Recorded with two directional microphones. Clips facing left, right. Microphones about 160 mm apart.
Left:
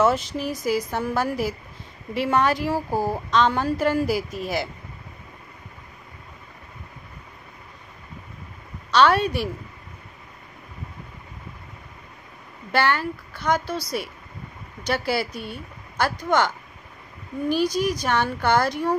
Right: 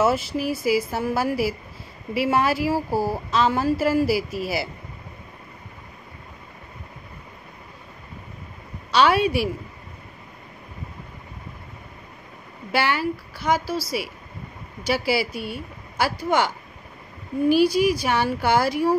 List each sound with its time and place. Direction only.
0.0 s a woman's voice: 5° right (ahead or behind)
8.9 s a woman's voice: 10° right (ahead or behind)
12.7 s a woman's voice: 10° right (ahead or behind)